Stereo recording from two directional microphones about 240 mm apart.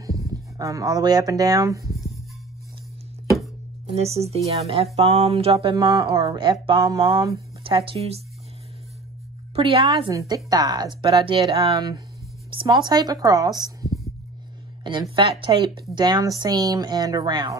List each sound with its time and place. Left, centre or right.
0.0 s speech: centre
3.9 s speech: right
9.6 s a woman's voice: right
14.8 s a woman's voice: centre